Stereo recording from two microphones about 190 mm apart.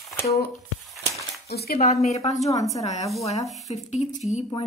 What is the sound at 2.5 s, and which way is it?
Speech, 15° left (ahead or behind).